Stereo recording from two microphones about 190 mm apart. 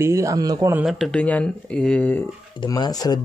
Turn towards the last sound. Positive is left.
turn(degrees=20)  # may be behind; listen again after turning